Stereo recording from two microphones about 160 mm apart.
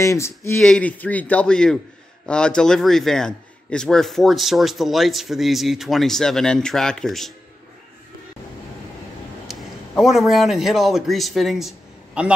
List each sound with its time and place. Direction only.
0.0 s speech: 20° left (ahead or behind)
0.6 s a man's voice: 5° left (ahead or behind)
9.5 s a man's voice: centre (ahead or behind)